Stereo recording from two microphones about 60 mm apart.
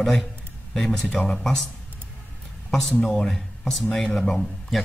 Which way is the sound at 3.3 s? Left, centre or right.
Centre.